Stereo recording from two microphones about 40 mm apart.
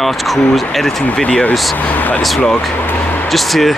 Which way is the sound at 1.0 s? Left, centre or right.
Left.